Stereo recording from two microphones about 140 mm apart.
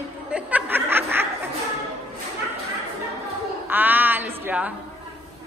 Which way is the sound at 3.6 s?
15° right (ahead or behind).